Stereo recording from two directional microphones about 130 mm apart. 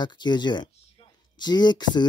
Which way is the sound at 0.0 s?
35° left (ahead or behind).